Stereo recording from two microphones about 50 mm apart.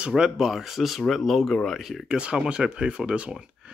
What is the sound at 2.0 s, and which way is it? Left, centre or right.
Speech, centre.